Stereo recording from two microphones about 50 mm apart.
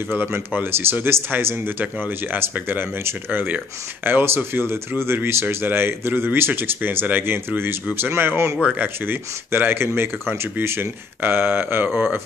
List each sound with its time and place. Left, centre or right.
0.1 s speech: right